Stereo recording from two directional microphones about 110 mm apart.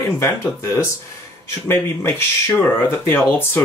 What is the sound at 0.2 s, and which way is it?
Speech, 25° left (ahead or behind).